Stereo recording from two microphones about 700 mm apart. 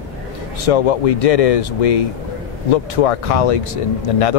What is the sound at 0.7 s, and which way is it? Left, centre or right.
Speech, left.